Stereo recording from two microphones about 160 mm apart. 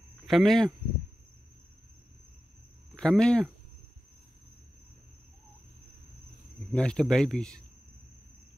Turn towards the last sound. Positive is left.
turn(degrees=5)  # may be behind; listen again after turning